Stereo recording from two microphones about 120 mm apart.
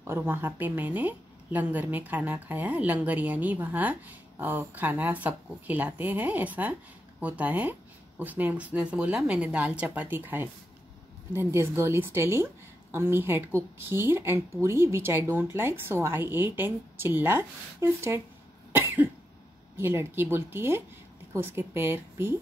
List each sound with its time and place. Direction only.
0.0 s a woman's voice: 20° right (ahead or behind)
19.8 s a woman's voice: 20° right (ahead or behind)